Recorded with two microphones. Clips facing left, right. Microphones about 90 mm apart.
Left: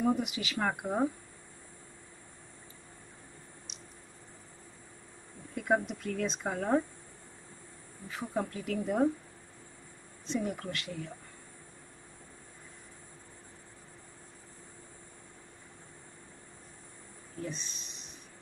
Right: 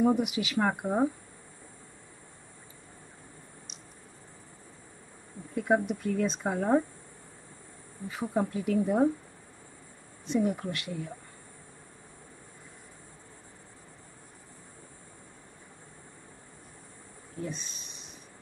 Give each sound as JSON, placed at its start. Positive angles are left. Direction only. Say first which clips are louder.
{"t": 0.0, "sound": "speech", "louder": "right 5 dB", "side_deg": -10}
{"t": 5.5, "sound": "speech", "louder": "right 3 dB", "side_deg": -5}
{"t": 8.3, "sound": "speech", "louder": "right 5 dB", "side_deg": -15}
{"t": 10.2, "sound": "speech", "louder": "right 6 dB", "side_deg": -10}
{"t": 17.4, "sound": "speech", "louder": "right 2 dB", "side_deg": -5}